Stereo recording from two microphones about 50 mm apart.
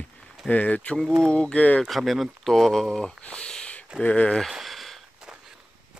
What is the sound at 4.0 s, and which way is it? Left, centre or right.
Speech, left.